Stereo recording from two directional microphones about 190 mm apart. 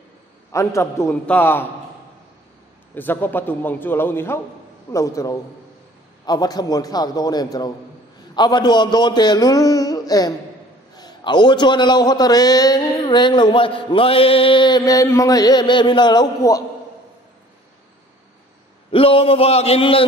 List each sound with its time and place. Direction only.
0.5 s a man's voice: 15° left (ahead or behind)
2.9 s a man's voice: 10° left (ahead or behind)
18.9 s a man's voice: 30° left (ahead or behind)